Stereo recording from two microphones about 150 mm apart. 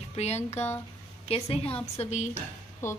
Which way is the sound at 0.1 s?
45° left (ahead or behind).